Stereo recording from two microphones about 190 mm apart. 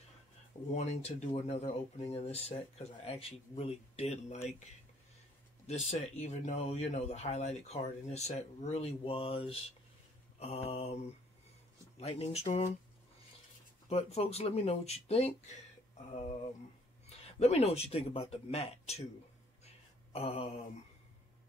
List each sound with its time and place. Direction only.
0.7 s speech: 35° left (ahead or behind)
5.7 s speech: 35° left (ahead or behind)
12.0 s speech: 35° left (ahead or behind)
13.8 s speech: 30° left (ahead or behind)
19.6 s a sound: 30° left (ahead or behind)